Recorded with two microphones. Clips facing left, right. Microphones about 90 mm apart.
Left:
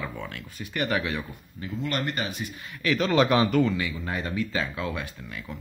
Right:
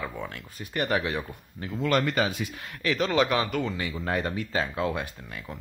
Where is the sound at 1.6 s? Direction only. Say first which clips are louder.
Even; 60° right (ahead or behind).